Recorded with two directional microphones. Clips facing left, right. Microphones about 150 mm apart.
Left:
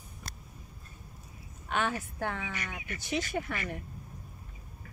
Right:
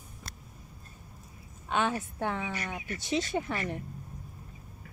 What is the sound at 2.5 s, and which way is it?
Speech, 35° right (ahead or behind).